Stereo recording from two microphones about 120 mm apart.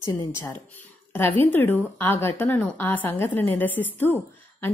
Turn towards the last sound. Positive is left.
turn(degrees=20)  # may be behind; listen again after turning